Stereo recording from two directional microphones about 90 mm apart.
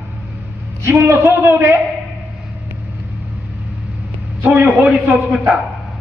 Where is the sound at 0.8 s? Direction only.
30° right (ahead or behind).